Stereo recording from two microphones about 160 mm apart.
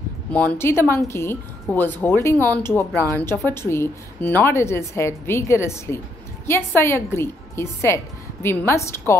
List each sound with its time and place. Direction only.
0.3 s a woman's voice: 10° left (ahead or behind)